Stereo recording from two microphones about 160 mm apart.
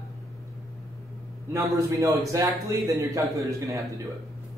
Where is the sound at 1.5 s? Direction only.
20° right (ahead or behind).